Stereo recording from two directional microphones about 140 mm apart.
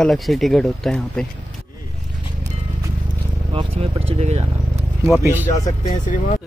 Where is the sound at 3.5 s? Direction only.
40° right (ahead or behind).